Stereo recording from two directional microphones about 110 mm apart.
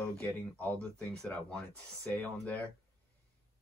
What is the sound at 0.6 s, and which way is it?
Speech, 10° left (ahead or behind).